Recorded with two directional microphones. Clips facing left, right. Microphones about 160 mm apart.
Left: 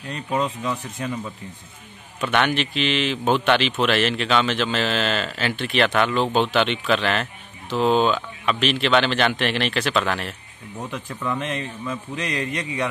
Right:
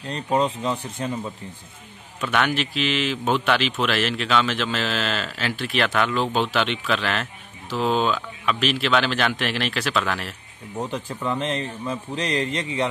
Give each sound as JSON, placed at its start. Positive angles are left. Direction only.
{"t": 0.1, "sound": "speech", "side_deg": -30}
{"t": 2.1, "sound": "a man's voice", "side_deg": 0}
{"t": 10.8, "sound": "a man's voice", "side_deg": -30}